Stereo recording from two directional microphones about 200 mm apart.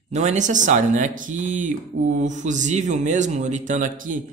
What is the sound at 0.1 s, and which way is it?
Speech, 35° right (ahead or behind).